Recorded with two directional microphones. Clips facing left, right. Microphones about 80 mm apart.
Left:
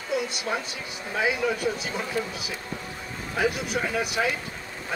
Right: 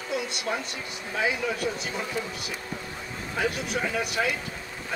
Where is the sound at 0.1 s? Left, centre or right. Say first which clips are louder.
Left 2 dB; centre.